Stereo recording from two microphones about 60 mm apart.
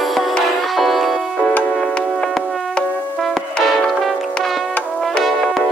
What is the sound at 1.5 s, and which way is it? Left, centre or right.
Music, left.